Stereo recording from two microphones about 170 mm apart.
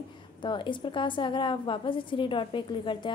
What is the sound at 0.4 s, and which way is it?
A woman's voice, 30° left (ahead or behind).